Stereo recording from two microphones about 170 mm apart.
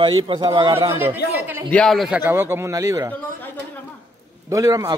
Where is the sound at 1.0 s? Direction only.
10° right (ahead or behind).